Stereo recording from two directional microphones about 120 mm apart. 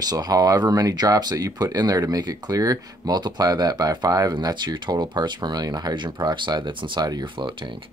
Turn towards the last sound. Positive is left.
turn(degrees=-35)  # may be behind; listen again after turning